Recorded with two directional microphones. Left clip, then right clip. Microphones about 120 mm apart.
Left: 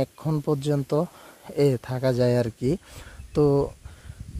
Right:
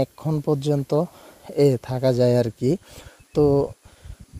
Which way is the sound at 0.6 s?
30° right (ahead or behind).